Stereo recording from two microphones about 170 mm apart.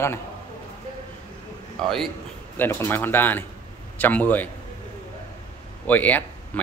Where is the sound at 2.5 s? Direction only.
15° left (ahead or behind).